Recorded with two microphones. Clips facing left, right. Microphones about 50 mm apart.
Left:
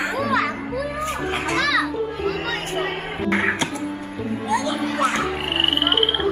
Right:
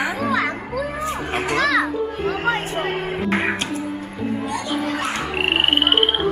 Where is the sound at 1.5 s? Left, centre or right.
Centre.